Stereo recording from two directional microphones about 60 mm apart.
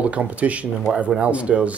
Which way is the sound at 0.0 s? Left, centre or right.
Right.